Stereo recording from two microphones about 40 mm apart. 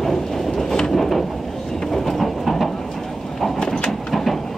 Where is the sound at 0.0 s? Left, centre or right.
Centre.